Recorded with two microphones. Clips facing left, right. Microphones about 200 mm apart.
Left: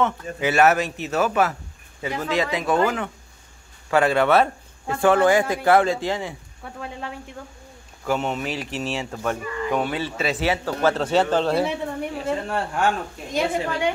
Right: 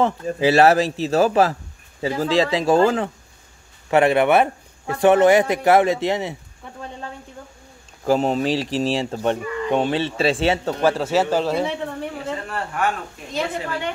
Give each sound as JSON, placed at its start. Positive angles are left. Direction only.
{"t": 0.0, "sound": "a man's voice", "side_deg": -30}
{"t": 8.0, "sound": "speech", "side_deg": -35}
{"t": 10.8, "sound": "a man's voice", "side_deg": -10}
{"t": 11.5, "sound": "a sound", "side_deg": 10}
{"t": 12.4, "sound": "speech", "side_deg": 30}
{"t": 13.3, "sound": "a woman's voice", "side_deg": 15}